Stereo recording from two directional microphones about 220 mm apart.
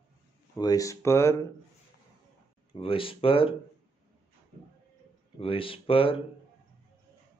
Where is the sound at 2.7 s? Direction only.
25° left (ahead or behind).